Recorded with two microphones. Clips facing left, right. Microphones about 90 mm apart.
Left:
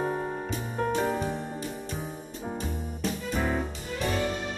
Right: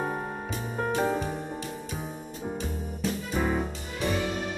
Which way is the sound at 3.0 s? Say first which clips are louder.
Right 1 dB; 5° right (ahead or behind).